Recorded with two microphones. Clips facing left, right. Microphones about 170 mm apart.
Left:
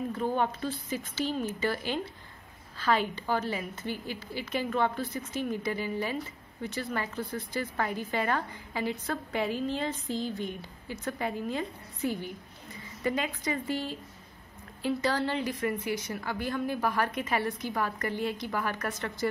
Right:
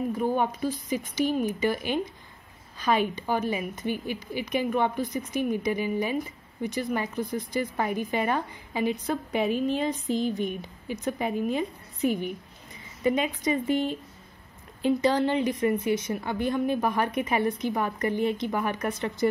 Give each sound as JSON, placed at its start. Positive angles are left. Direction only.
{"t": 0.1, "sound": "a woman's voice", "side_deg": -15}